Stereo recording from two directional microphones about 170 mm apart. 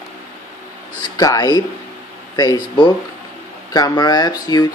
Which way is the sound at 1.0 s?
20° left (ahead or behind).